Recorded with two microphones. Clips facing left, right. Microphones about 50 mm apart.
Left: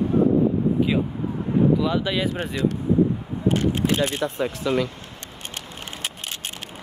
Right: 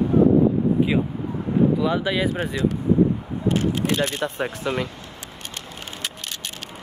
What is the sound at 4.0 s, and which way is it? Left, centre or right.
Speech, right.